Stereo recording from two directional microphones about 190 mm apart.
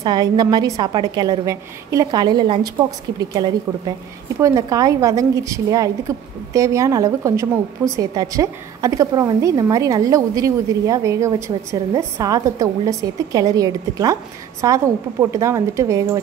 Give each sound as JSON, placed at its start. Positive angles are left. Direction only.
{"t": 0.0, "sound": "a woman's voice", "side_deg": -20}